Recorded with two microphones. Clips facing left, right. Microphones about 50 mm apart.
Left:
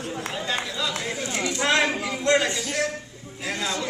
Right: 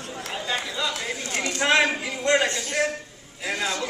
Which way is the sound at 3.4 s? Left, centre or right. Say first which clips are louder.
Right 1 dB; centre.